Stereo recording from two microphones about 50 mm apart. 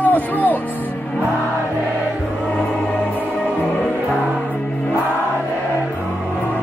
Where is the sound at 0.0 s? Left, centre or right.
Left.